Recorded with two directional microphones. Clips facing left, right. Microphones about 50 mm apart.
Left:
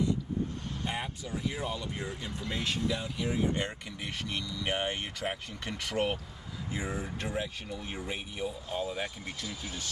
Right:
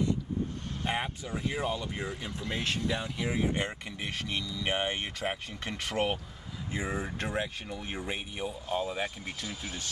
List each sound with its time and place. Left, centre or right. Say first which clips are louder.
0.8 s speech: right 4 dB; right
2.6 s speech: even; right
3.5 s speech: right 1 dB; right